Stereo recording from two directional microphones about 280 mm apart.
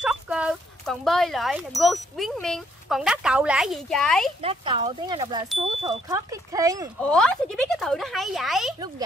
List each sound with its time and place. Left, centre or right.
0.0 s speech: centre
4.4 s speech: centre
7.0 s speech: centre